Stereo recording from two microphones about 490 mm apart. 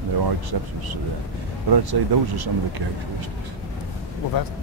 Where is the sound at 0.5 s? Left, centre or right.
Right.